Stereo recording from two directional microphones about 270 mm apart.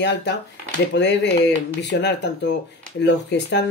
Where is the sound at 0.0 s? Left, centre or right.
Left.